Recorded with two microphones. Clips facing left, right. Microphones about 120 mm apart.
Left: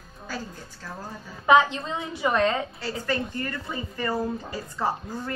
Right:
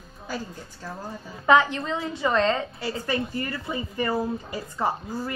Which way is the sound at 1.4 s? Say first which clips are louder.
Even; 15° left (ahead or behind).